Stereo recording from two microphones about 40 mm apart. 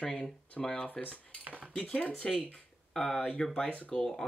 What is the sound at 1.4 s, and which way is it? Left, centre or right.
Cutlery, right.